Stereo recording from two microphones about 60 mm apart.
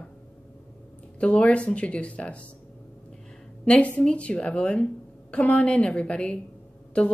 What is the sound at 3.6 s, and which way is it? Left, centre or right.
A woman's voice, left.